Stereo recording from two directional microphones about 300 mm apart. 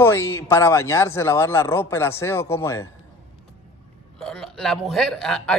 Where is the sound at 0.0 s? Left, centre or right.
Centre.